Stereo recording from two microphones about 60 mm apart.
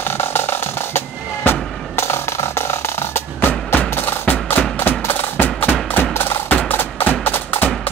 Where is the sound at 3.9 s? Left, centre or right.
Left.